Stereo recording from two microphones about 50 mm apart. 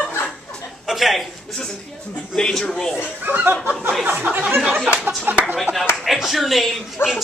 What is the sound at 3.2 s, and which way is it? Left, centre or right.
Chuckle, right.